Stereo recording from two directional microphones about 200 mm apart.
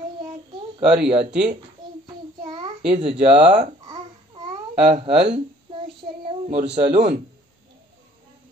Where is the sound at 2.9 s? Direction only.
30° right (ahead or behind).